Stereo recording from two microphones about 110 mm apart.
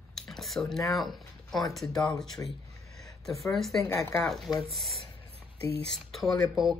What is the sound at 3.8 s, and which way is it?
Speech, 25° left (ahead or behind).